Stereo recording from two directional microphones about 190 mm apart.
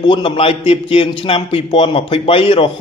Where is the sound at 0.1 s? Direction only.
25° left (ahead or behind).